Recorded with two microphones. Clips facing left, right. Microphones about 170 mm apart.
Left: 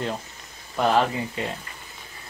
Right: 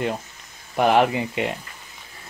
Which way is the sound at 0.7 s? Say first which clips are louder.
Right 4 dB; 15° right (ahead or behind).